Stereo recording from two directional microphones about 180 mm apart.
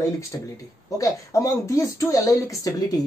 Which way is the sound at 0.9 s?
20° left (ahead or behind).